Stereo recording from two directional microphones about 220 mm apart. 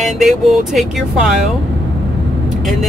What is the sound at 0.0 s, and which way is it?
Speech, centre (ahead or behind).